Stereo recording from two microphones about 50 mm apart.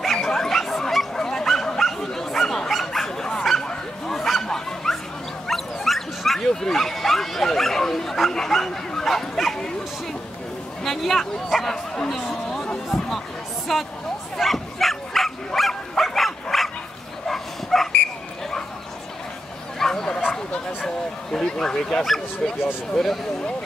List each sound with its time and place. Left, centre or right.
0.0 s dog: centre
3.6 s bow-wow: centre
5.5 s dog: centre
10.8 s speech: centre
12.3 s a sound: centre
13.7 s speech: centre
14.3 s bow-wow: centre
16.0 s dog: centre
17.3 s bow-wow: centre
19.8 s bow-wow: centre